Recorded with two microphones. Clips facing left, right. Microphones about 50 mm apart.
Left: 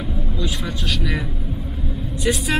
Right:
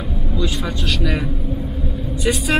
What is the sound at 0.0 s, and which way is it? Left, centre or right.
Speech, centre.